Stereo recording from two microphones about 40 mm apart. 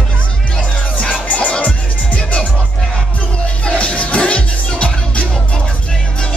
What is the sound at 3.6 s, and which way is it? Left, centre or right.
Music, left.